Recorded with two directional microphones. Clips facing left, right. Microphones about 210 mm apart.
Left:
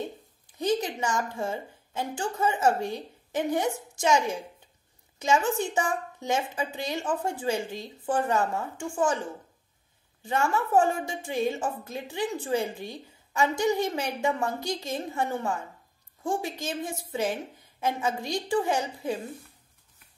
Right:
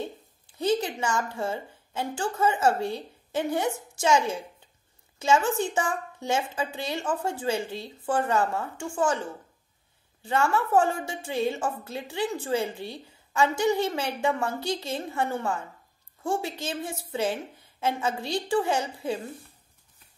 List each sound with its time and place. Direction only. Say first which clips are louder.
0.6 s a woman's voice: right 1 dB; 15° left (ahead or behind)
10.2 s a woman's voice: right 2 dB; 15° left (ahead or behind)